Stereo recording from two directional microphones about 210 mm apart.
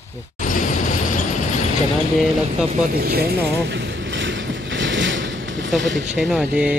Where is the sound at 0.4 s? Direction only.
40° left (ahead or behind).